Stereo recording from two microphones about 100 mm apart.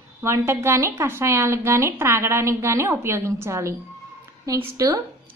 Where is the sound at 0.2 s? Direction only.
30° right (ahead or behind).